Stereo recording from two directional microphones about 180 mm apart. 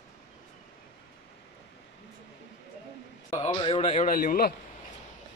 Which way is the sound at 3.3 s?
25° left (ahead or behind).